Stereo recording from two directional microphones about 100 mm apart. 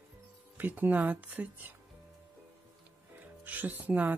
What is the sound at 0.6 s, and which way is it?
Speech, 20° right (ahead or behind).